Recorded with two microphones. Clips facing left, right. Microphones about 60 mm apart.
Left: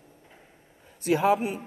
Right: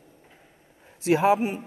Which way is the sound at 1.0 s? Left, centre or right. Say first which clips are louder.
Right 2 dB; right.